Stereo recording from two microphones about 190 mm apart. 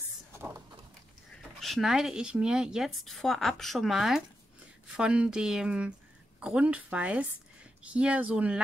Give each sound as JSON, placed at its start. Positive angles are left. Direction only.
{"t": 1.6, "sound": "speech", "side_deg": 0}